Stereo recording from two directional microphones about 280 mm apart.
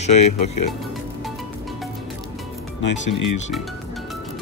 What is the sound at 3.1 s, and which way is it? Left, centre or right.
Speech, left.